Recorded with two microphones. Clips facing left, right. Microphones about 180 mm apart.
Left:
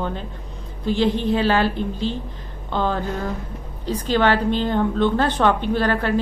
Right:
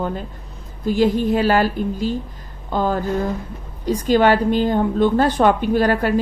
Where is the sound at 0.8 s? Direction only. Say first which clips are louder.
Right 3 dB; 10° right (ahead or behind).